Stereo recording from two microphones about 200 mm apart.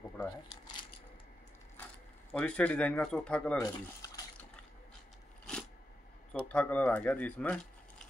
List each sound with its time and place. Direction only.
2.3 s speech: 5° left (ahead or behind)
3.5 s speech: 15° left (ahead or behind)
5.5 s a sound: 5° left (ahead or behind)
6.5 s speech: 5° left (ahead or behind)